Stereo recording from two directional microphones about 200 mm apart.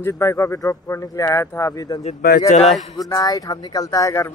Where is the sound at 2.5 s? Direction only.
35° left (ahead or behind).